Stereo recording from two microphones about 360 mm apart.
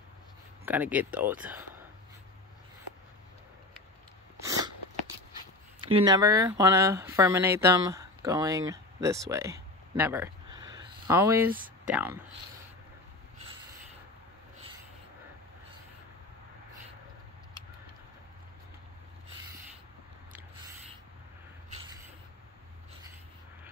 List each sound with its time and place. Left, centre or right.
0.7 s speech: centre
4.5 s biting: centre
5.9 s speech: centre
11.5 s speech: right
11.9 s speech: centre